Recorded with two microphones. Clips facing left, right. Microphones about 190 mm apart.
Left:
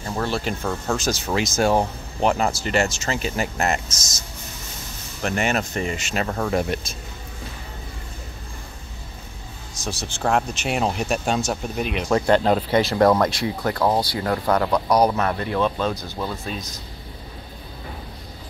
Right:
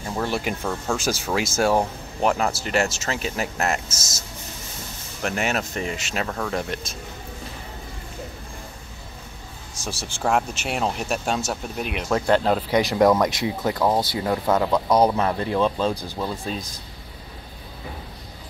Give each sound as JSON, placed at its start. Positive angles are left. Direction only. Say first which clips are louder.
{"t": 0.0, "sound": "speech", "louder": "even", "side_deg": -10}
{"t": 0.6, "sound": "speech", "louder": "left 1 dB", "side_deg": 0}
{"t": 0.9, "sound": "speech", "louder": "left 1 dB", "side_deg": -10}
{"t": 5.2, "sound": "speech", "louder": "left 2 dB", "side_deg": 0}
{"t": 6.2, "sound": "speech", "louder": "left 5 dB", "side_deg": 10}
{"t": 9.8, "sound": "speech", "louder": "left 2 dB", "side_deg": -10}
{"t": 12.6, "sound": "speech", "louder": "left 1 dB", "side_deg": -10}
{"t": 15.9, "sound": "speech", "louder": "right 1 dB", "side_deg": -10}